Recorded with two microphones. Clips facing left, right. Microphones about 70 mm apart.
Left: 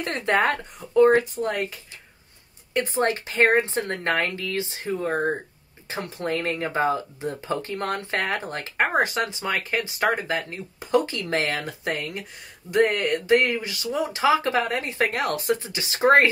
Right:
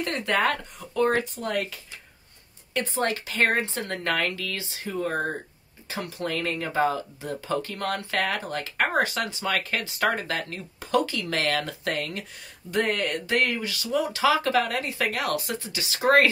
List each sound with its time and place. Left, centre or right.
0.0 s speech: left